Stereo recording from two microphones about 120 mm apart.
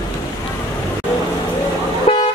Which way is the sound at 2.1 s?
50° left (ahead or behind).